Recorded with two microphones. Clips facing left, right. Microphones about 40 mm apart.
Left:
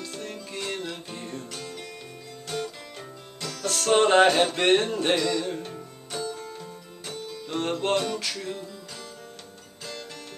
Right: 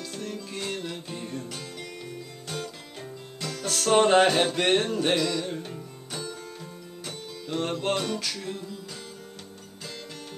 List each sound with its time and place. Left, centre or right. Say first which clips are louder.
0.0 s music: right 1 dB; centre
3.6 s music: even; centre